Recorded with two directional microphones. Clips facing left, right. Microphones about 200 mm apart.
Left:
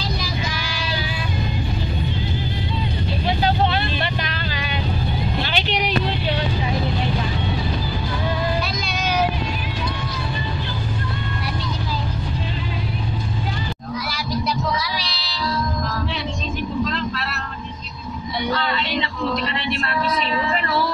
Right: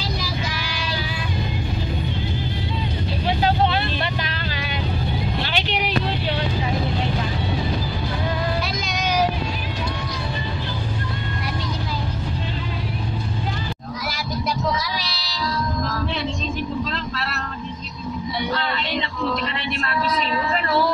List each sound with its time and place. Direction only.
4.2 s vehicle: centre (ahead or behind)
8.8 s vehicle: 15° right (ahead or behind)
14.8 s child singing: 45° right (ahead or behind)